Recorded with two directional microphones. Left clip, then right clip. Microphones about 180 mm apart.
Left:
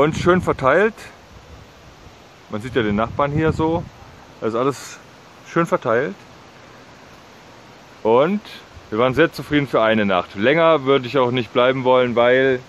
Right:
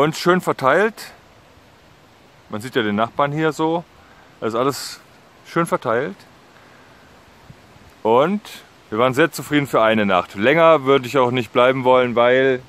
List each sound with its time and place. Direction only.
0.0 s speech: 45° right (ahead or behind)
2.5 s speech: 45° right (ahead or behind)
8.0 s speech: 45° right (ahead or behind)